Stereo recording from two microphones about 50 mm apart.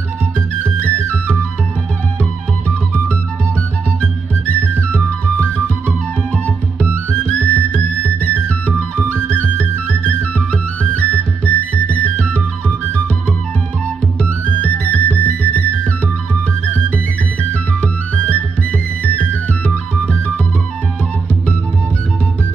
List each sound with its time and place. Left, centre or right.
0.8 s music: left
4.0 s music: left
7.1 s music: left
14.4 s music: left
18.1 s music: left